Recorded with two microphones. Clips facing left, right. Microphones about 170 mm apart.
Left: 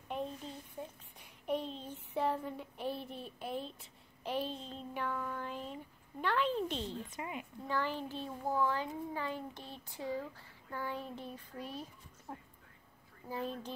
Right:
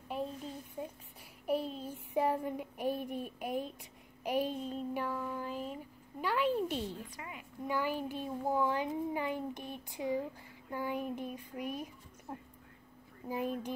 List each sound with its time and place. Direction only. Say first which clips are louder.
0.1 s a sound: right 2 dB; 5° right (ahead or behind)
1.4 s child singing: right 3 dB; 5° right (ahead or behind)
6.2 s speech: right 2 dB; 10° right (ahead or behind)
7.1 s a woman's voice: left 5 dB; 25° left (ahead or behind)
7.6 s a child's voice: right 3 dB; 10° right (ahead or behind)
13.3 s a child's voice: right 4 dB; 15° right (ahead or behind)